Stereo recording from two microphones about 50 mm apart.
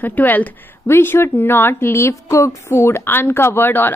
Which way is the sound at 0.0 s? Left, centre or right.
Left.